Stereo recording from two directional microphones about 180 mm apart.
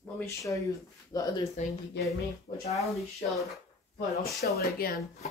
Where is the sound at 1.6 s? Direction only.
40° left (ahead or behind).